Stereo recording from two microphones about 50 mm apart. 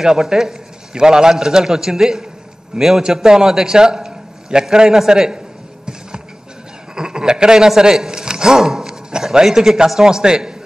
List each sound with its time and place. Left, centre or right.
0.0 s a man's voice: centre
7.0 s a man's voice: centre